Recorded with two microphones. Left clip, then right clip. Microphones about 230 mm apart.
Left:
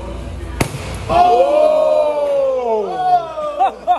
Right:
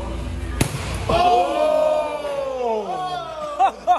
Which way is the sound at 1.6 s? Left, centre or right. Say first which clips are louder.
Left 6 dB; left.